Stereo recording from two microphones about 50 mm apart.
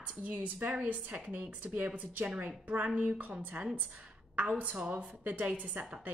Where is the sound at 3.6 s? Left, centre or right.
Right.